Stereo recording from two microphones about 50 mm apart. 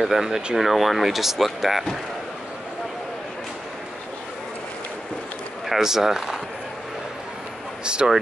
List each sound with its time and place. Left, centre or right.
0.0 s speech: centre
5.7 s speech: centre
7.8 s speech: centre